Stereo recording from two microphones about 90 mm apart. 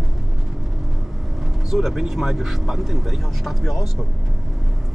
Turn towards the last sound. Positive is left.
turn(degrees=0)  # may be behind; listen again after turning